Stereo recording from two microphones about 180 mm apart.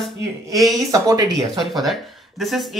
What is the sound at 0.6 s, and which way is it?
Speech, 20° right (ahead or behind).